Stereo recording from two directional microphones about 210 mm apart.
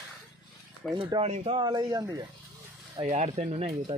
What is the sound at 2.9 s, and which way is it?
Speech, 30° right (ahead or behind).